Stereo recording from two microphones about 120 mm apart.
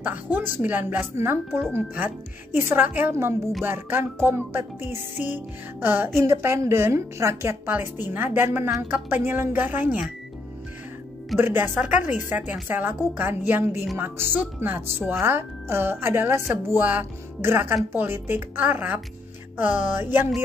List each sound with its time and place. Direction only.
0.0 s a woman's voice: 15° right (ahead or behind)
3.6 s music: 20° right (ahead or behind)
8.9 s a woman's voice: 15° right (ahead or behind)
11.3 s a woman's voice: 15° right (ahead or behind)
13.9 s music: 20° right (ahead or behind)
17.9 s a woman's voice: 20° right (ahead or behind)